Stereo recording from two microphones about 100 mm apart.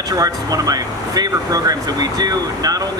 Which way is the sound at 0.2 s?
40° right (ahead or behind).